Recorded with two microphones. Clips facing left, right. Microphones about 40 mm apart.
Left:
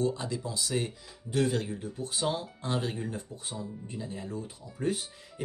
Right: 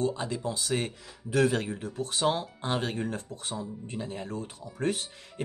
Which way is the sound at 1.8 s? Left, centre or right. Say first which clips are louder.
Right 4 dB; right.